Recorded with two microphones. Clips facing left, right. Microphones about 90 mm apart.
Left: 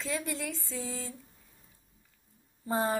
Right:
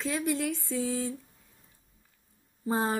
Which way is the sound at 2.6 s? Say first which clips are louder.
Right 1 dB; 20° right (ahead or behind).